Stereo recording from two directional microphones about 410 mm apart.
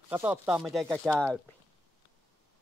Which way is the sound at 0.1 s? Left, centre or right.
Centre.